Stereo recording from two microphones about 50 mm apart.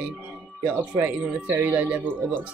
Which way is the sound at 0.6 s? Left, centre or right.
Right.